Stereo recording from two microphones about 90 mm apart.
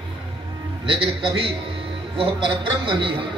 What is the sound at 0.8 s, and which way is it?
A man's voice, 70° right (ahead or behind).